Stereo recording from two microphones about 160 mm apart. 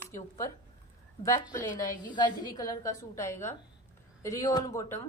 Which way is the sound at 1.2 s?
20° left (ahead or behind).